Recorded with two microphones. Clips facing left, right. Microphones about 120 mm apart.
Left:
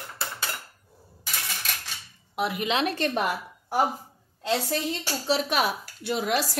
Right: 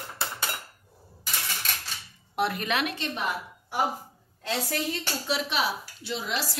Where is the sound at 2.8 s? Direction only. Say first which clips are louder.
Left 6 dB; 50° left (ahead or behind).